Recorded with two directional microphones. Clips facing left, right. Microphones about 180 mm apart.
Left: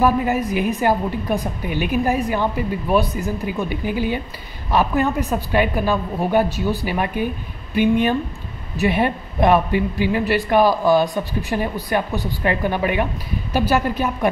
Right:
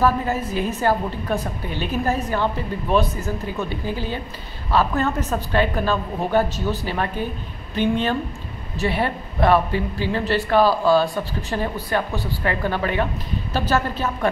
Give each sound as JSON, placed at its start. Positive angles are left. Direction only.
{"t": 0.0, "sound": "a woman's voice", "side_deg": 15}